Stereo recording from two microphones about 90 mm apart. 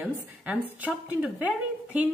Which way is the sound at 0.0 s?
15° right (ahead or behind).